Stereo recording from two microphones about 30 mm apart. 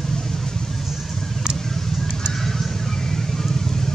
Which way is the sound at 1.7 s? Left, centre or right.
Centre.